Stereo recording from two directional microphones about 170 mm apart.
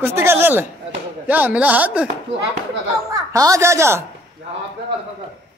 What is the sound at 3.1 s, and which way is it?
Speech, 20° right (ahead or behind).